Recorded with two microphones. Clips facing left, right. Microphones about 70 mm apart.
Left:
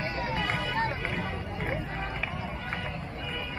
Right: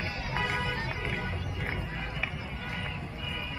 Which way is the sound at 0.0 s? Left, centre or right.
Left.